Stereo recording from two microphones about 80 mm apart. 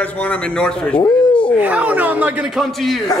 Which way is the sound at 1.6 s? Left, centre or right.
Centre.